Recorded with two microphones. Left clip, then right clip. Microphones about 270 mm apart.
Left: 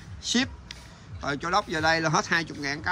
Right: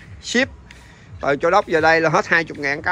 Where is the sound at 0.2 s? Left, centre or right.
Centre.